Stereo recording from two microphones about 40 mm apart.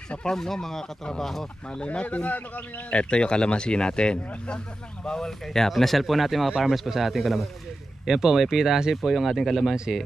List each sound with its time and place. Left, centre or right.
0.2 s speech: centre
1.9 s a man's voice: left
2.9 s speech: left; by 8.9 s centre
8.9 s speech: centre